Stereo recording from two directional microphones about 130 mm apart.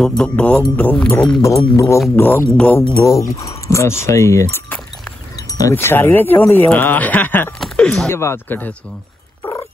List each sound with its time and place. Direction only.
0.2 s speech: 10° left (ahead or behind)
1.4 s speech: 25° left (ahead or behind); by 2.8 s 10° left (ahead or behind)
3.0 s speech: 25° left (ahead or behind)
7.6 s a sound: 5° left (ahead or behind)
8.1 s speech: 20° left (ahead or behind)
9.4 s cat: 25° left (ahead or behind)